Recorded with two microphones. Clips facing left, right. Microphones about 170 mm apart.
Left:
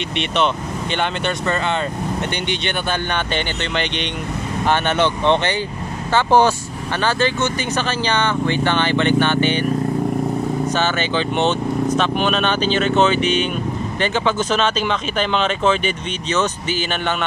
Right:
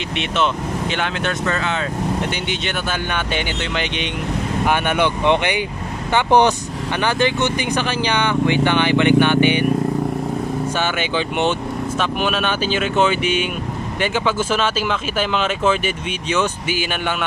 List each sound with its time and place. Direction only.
0.9 s speech: centre (ahead or behind)
2.6 s speech: 5° right (ahead or behind)
10.8 s speech: 10° right (ahead or behind)